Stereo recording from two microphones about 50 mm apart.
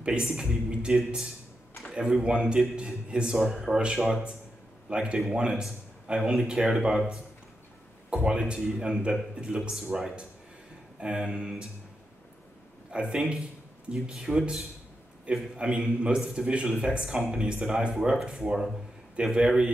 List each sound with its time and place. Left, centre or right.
0.0 s speech: centre
2.0 s speech: centre
3.3 s speech: centre
3.6 s speech: centre
8.1 s speech: centre
9.6 s speech: centre
12.9 s speech: centre